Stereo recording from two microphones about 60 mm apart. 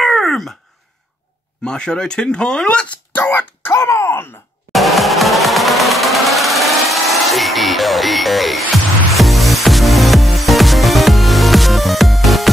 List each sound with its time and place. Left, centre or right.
0.0 s groan: centre
1.6 s speech: centre
3.2 s a sound: left
3.8 s groan: left
4.7 s a sound: centre
9.1 s music: centre